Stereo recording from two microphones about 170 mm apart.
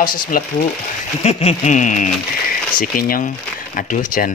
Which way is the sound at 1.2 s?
35° left (ahead or behind).